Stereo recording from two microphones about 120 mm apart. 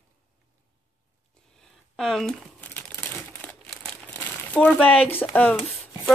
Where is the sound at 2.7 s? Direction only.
15° left (ahead or behind).